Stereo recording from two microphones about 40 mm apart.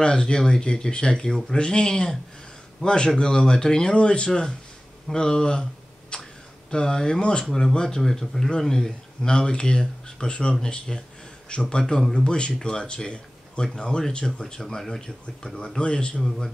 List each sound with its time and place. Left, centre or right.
0.0 s speech: centre
5.0 s a sound: centre
6.7 s speech: centre
12.0 s speech: centre
12.3 s speech: left